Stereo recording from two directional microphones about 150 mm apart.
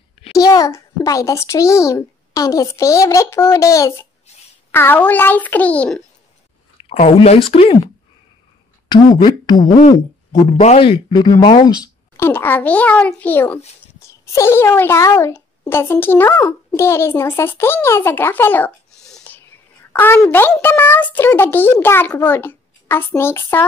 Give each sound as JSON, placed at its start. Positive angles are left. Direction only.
{"t": 0.4, "sound": "a child's voice", "side_deg": 20}
{"t": 6.9, "sound": "speech", "side_deg": 45}
{"t": 8.9, "sound": "a child's voice", "side_deg": 30}
{"t": 10.6, "sound": "speech", "side_deg": 40}
{"t": 12.3, "sound": "a child's voice", "side_deg": 15}